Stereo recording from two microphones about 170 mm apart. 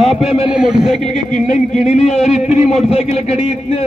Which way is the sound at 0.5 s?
5° right (ahead or behind).